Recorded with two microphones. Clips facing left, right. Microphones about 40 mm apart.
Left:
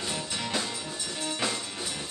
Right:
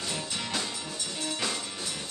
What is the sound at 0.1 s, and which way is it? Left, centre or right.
Music, centre.